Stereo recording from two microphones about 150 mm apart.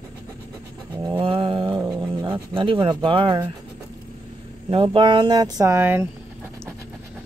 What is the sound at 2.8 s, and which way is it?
Mantra, 30° right (ahead or behind).